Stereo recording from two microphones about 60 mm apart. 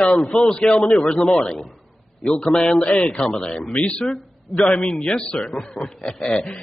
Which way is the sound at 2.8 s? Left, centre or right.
Centre.